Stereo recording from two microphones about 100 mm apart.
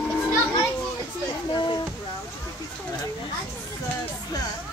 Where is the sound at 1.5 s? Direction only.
45° left (ahead or behind).